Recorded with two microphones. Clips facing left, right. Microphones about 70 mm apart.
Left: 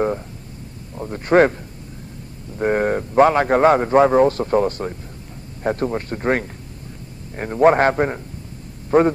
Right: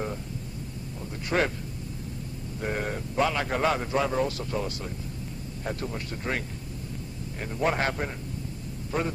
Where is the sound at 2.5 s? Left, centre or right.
Left.